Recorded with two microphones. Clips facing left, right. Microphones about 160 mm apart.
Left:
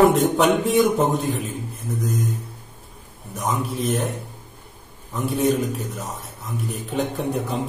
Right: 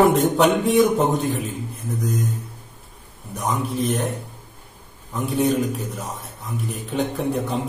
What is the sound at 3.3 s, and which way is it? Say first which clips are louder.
Speech: right 1 dB; centre (ahead or behind).